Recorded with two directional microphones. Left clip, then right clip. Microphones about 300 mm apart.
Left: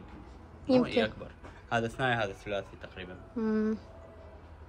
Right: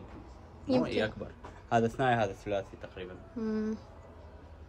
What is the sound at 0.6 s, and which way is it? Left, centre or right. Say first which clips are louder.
Speech: left 3 dB; centre.